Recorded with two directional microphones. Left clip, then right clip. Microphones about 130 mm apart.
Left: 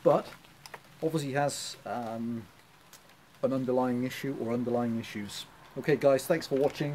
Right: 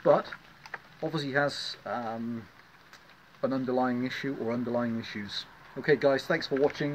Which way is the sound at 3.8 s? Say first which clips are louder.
Right 1 dB; 30° left (ahead or behind).